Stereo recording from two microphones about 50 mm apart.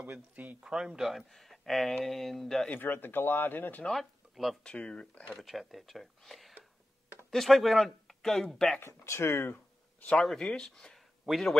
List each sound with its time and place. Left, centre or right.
0.7 s speech: centre
2.7 s speech: left
3.9 s speech: centre
4.6 s speech: centre
5.3 s speech: centre
8.8 s speech: left
10.2 s speech: centre
11.3 s a man's voice: centre